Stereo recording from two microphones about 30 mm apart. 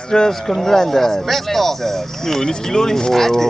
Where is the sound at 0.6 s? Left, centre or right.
Centre.